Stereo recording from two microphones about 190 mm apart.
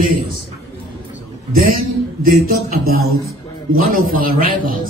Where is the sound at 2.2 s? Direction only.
50° right (ahead or behind).